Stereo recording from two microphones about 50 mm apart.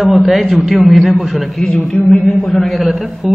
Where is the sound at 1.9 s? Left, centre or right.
Left.